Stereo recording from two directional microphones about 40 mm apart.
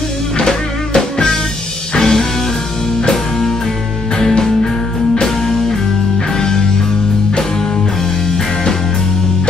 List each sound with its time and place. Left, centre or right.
0.4 s music: centre